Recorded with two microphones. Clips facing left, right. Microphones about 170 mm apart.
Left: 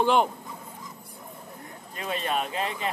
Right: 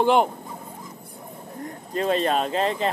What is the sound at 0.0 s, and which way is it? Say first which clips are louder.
Speech: right 3 dB; 15° right (ahead or behind).